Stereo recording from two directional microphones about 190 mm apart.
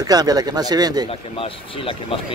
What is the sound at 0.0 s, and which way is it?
Speech, 20° right (ahead or behind).